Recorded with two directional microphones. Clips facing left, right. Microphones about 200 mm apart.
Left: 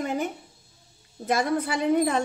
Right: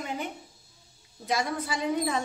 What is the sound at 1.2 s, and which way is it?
Speech, 55° left (ahead or behind).